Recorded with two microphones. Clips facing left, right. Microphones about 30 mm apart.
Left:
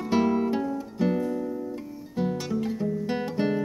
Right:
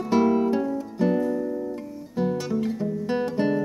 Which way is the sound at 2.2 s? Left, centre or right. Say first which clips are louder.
Right 3 dB; centre.